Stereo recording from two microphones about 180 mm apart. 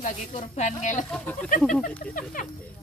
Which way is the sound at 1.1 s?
5° left (ahead or behind).